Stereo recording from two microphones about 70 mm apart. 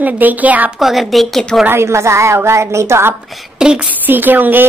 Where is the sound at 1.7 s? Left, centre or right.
Right.